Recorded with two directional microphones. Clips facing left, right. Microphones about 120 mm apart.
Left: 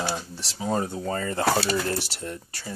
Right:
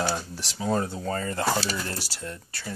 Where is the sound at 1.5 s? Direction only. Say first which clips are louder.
Left 4 dB; 60° left (ahead or behind).